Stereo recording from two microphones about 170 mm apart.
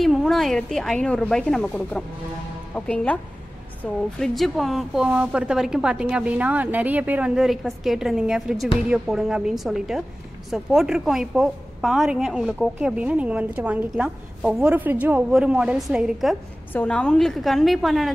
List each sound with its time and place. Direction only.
0.0 s a woman's voice: centre (ahead or behind)